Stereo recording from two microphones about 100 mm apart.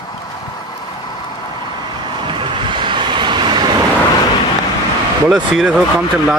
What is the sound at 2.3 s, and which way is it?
Vehicle, 55° right (ahead or behind).